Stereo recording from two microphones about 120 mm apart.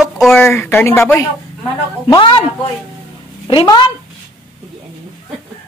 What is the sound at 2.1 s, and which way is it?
Speech, 45° left (ahead or behind).